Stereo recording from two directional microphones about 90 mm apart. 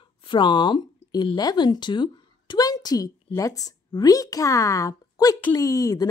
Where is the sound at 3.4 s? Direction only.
40° left (ahead or behind).